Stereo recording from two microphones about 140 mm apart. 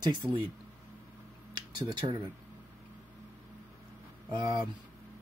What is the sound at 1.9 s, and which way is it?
Speech, 35° right (ahead or behind).